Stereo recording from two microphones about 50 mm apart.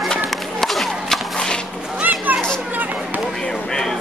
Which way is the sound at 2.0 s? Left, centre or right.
Right.